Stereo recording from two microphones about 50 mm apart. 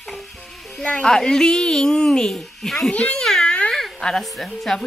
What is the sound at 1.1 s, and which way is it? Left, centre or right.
Speech, centre.